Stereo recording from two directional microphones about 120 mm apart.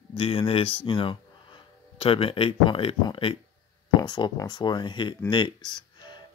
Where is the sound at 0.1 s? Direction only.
50° left (ahead or behind).